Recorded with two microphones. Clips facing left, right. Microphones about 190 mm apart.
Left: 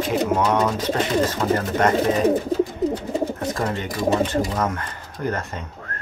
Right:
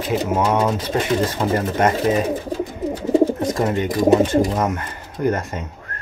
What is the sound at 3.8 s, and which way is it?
Speech, 10° right (ahead or behind).